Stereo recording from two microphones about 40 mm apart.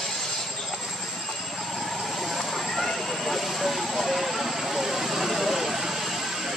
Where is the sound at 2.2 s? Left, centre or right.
Centre.